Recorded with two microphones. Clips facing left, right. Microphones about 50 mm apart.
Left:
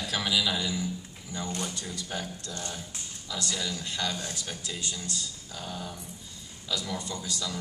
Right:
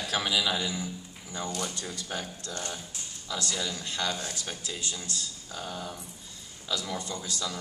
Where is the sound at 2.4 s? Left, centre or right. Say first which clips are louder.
Right 1 dB; right.